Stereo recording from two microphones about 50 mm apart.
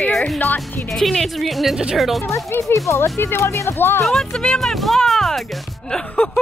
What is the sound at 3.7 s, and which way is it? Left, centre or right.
Speech, left.